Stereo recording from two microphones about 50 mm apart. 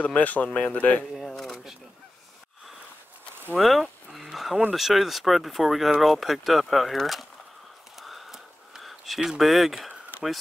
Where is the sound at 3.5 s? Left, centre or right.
Centre.